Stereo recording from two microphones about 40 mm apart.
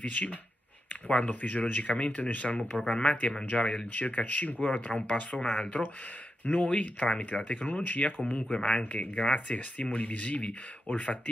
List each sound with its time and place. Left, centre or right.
0.0 s speech: left
6.4 s speech: left
7.8 s speech: left
8.3 s speech: left